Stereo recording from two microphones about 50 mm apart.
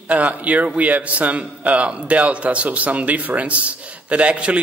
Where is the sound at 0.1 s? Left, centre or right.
Right.